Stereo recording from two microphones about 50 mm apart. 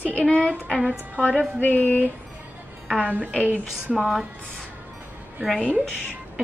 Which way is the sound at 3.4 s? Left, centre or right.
Right.